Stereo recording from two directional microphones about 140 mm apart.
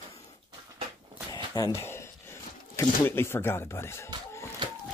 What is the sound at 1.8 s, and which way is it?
Speech, 20° left (ahead or behind).